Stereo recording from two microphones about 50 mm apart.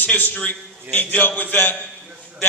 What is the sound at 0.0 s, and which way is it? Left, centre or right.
Speech, left.